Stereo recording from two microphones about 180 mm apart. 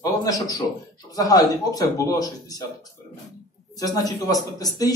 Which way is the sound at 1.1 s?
20° left (ahead or behind).